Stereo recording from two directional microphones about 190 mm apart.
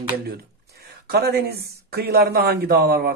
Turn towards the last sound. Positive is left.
turn(degrees=-55)  # may be behind; listen again after turning